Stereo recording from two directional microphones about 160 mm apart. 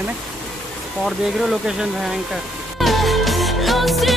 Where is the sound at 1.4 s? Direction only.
5° right (ahead or behind).